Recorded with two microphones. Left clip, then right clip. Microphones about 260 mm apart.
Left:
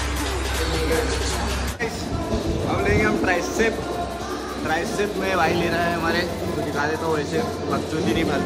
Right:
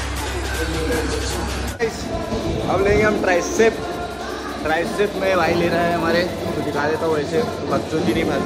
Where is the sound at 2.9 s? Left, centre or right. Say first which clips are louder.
Right 3 dB; centre.